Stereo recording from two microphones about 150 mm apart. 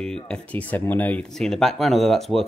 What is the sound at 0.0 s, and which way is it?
Speech, 5° left (ahead or behind).